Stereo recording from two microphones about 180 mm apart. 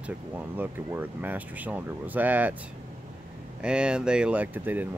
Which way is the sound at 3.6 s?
5° right (ahead or behind).